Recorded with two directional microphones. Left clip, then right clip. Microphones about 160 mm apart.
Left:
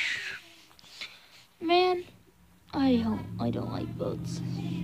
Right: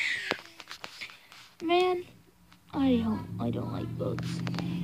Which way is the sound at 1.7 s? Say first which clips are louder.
Left 2 dB; 15° left (ahead or behind).